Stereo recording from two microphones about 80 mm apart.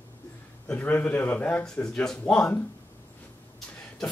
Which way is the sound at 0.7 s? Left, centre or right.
Left.